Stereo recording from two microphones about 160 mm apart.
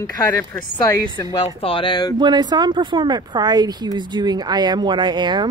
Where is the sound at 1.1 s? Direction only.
35° left (ahead or behind).